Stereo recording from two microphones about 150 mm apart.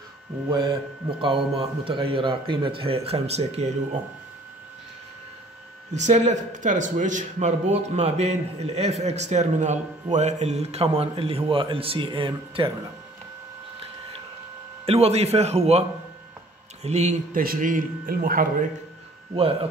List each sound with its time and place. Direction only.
0.5 s a man's voice: 35° right (ahead or behind)
5.9 s a man's voice: 50° right (ahead or behind); by 12.7 s 35° right (ahead or behind)
14.9 s speech: 45° right (ahead or behind)
16.8 s speech: 45° right (ahead or behind)
17.4 s speech: 65° right (ahead or behind)